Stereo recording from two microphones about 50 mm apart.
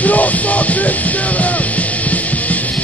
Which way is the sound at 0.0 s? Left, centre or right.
Left.